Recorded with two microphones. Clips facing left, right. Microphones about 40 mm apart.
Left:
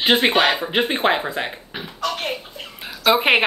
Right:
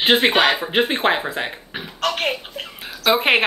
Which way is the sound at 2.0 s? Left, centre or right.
Right.